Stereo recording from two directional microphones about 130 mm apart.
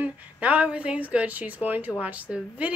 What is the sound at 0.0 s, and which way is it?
A woman's voice, 10° right (ahead or behind).